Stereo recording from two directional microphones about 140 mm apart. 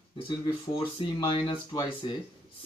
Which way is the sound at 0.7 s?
40° left (ahead or behind).